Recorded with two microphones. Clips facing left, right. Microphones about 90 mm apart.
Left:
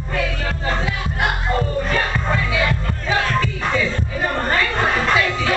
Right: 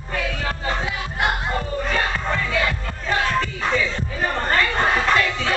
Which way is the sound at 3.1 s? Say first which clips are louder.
Left 1 dB; 5° left (ahead or behind).